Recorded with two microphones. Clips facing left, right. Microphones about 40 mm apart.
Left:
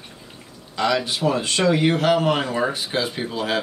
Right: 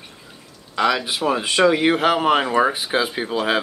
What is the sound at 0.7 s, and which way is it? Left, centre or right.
Speech, centre.